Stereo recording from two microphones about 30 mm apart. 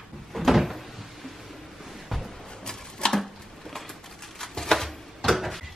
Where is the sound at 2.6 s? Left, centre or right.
Centre.